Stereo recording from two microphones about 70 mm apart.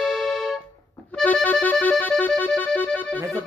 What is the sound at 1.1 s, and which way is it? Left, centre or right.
Accordion, centre.